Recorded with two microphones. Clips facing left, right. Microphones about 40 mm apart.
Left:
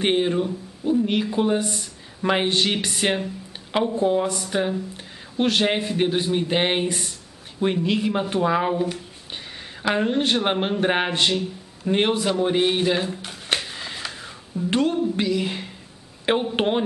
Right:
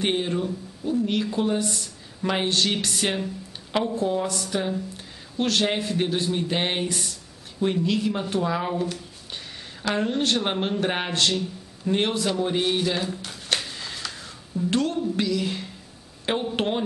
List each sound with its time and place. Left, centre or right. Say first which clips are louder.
0.0 s speech: left 4 dB; centre